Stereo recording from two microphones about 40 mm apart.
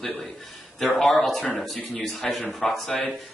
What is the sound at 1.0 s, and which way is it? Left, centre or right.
Speech, centre.